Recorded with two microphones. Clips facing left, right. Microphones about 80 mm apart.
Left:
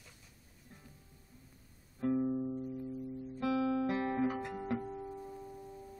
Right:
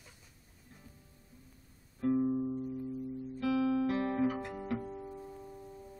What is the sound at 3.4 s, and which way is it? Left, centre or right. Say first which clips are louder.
Guitar: right 2 dB; left.